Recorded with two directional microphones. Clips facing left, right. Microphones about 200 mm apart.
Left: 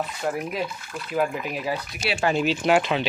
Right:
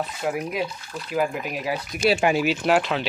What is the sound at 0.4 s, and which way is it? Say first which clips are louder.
Speech: right 1 dB; 5° right (ahead or behind).